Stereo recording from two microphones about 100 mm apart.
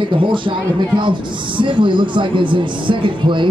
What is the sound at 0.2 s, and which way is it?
Speech, 55° right (ahead or behind).